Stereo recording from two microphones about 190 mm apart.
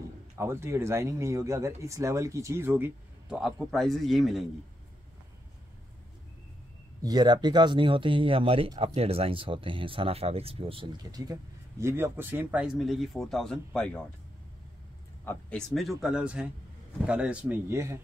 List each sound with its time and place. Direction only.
0.4 s speech: 15° right (ahead or behind)
7.0 s speech: 20° right (ahead or behind); by 14.0 s 5° left (ahead or behind)
15.2 s speech: centre (ahead or behind); by 17.9 s 15° right (ahead or behind)